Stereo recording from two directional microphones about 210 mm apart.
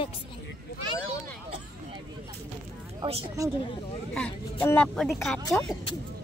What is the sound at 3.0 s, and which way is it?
Speech, 25° right (ahead or behind).